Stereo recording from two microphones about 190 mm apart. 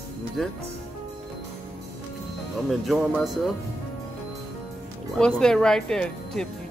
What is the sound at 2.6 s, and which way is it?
Speech, centre (ahead or behind).